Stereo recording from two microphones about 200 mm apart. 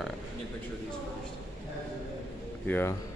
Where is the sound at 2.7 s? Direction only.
10° left (ahead or behind).